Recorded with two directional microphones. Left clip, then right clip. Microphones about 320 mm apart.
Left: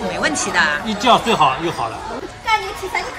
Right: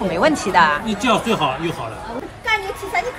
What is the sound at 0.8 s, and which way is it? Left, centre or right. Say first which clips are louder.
Speech: left 4 dB; centre.